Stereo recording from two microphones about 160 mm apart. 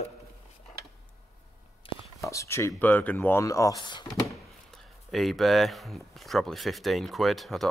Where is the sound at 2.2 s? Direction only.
20° left (ahead or behind).